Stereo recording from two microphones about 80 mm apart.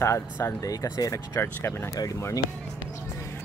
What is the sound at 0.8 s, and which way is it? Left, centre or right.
Speech, left.